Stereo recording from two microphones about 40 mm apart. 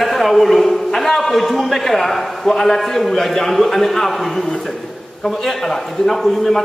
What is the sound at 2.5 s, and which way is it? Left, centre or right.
A man's voice, centre.